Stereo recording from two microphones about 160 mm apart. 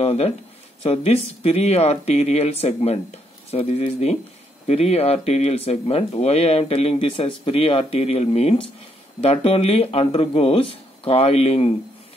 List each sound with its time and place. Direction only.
0.0 s speech: 40° left (ahead or behind)